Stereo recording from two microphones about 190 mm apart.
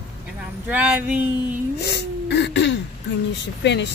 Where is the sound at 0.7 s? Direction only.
10° right (ahead or behind).